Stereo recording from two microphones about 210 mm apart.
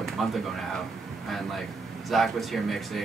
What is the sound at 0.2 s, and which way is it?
Speech, centre (ahead or behind).